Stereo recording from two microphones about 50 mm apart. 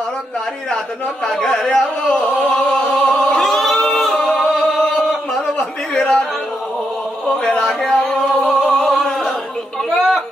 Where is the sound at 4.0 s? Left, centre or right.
Centre.